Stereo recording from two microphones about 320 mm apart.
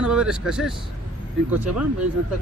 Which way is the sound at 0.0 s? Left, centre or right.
Centre.